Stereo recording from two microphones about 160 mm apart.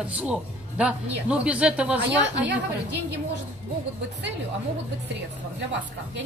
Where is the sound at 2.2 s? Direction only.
90° right.